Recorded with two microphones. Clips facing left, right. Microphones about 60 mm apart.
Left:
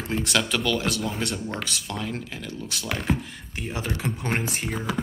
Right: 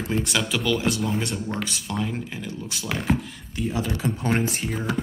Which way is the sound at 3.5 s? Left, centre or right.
Left.